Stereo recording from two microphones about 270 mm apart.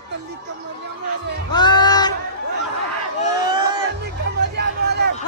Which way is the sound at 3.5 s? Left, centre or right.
Centre.